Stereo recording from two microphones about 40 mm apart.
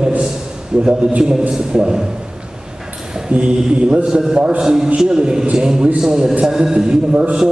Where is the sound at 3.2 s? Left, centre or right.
Right.